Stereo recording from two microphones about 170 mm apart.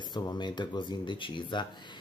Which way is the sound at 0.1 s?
25° left (ahead or behind).